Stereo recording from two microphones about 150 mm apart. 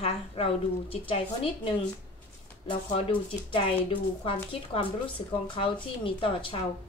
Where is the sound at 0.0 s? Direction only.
40° left (ahead or behind).